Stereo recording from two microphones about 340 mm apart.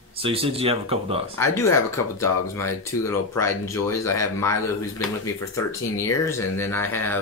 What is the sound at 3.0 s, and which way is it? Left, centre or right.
Speech, centre.